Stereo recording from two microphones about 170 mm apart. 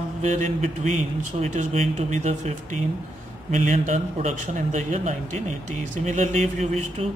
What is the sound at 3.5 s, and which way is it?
A man's voice, 50° right (ahead or behind).